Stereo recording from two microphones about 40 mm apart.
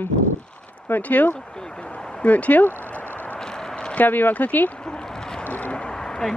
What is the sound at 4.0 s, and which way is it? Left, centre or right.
Speech, left.